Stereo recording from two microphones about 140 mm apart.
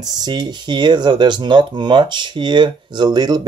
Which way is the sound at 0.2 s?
30° right (ahead or behind).